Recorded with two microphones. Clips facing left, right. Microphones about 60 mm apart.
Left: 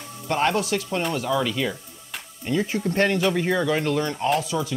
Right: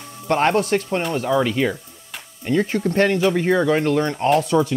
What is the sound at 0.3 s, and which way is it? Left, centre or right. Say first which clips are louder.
Speech: right 5 dB; right.